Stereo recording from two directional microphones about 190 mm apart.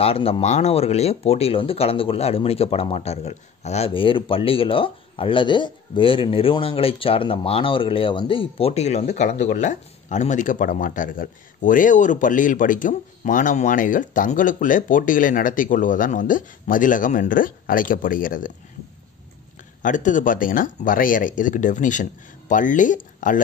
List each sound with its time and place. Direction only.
0.0 s speech: 30° left (ahead or behind); by 18.5 s 45° left (ahead or behind)
19.8 s speech: 40° left (ahead or behind)